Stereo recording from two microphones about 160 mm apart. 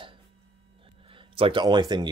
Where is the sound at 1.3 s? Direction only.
30° right (ahead or behind).